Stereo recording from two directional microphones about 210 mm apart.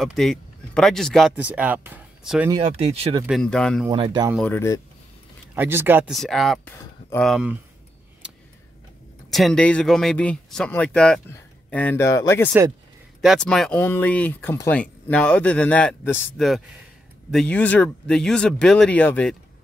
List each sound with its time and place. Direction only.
0.0 s speech: centre (ahead or behind)
2.5 s speech: 30° right (ahead or behind)
3.3 s speech: centre (ahead or behind)
3.9 s speech: 20° right (ahead or behind)
4.4 s speech: 10° left (ahead or behind)
5.5 s speech: 10° right (ahead or behind)
9.3 s speech: centre (ahead or behind)
13.2 s speech: centre (ahead or behind)